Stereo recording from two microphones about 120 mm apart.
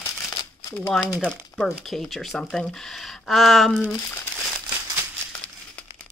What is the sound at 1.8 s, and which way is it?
Speech, centre (ahead or behind).